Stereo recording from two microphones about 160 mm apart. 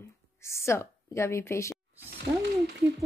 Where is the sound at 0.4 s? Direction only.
15° left (ahead or behind).